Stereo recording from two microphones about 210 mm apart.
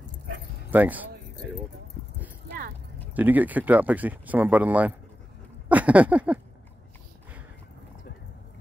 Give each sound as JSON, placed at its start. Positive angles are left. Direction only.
{"t": 0.7, "sound": "speech", "side_deg": -10}
{"t": 3.2, "sound": "speech", "side_deg": -10}